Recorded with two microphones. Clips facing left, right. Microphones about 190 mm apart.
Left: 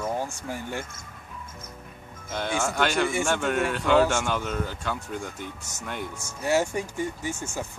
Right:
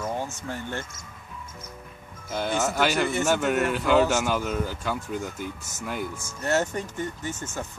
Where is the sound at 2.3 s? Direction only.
5° right (ahead or behind).